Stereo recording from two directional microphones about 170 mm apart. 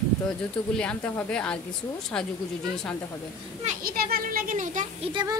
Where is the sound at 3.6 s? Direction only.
60° right (ahead or behind).